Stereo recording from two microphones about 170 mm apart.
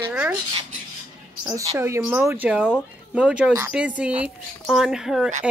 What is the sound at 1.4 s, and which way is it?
Speech, 25° right (ahead or behind).